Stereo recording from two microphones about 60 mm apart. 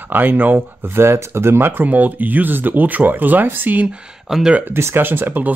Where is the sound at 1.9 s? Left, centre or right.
Right.